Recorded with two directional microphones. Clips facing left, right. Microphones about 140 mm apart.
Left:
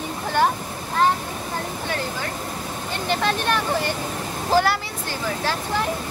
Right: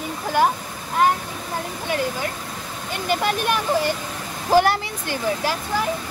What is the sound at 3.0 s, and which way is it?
Speech, 10° right (ahead or behind).